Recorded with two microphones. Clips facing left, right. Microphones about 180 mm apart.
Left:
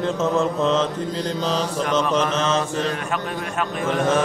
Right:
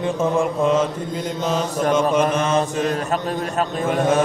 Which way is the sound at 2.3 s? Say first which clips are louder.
Right 2 dB; 10° right (ahead or behind).